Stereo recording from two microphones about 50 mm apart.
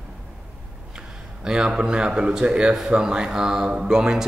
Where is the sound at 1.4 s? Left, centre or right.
Centre.